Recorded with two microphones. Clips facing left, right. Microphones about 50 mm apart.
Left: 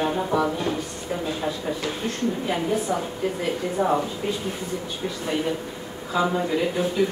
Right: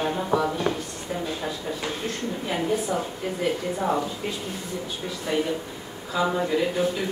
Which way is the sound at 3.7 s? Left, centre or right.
Centre.